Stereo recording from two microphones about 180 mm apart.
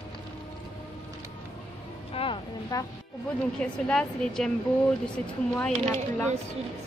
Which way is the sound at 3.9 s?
5° left (ahead or behind).